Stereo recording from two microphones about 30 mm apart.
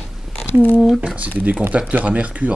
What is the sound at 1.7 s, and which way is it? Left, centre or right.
Speech, right.